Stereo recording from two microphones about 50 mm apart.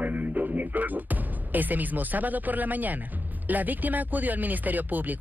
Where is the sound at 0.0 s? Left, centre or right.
Right.